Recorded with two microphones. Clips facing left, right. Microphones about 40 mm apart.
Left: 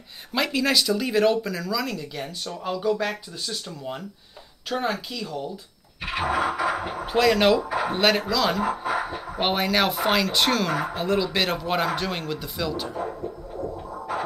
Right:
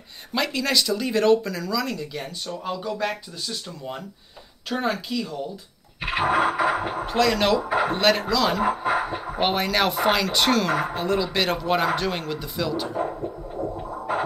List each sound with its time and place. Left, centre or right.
0.3 s speech: centre
5.9 s a sound: right
7.1 s speech: centre
7.6 s a sound: centre
7.9 s speech: centre
8.6 s speech: right
9.0 s a sound: centre
9.4 s speech: centre
14.1 s music: right